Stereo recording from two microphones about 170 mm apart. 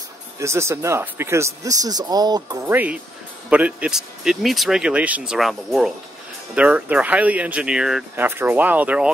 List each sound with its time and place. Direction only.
0.4 s speech: 15° right (ahead or behind)
2.6 s speech: 10° right (ahead or behind)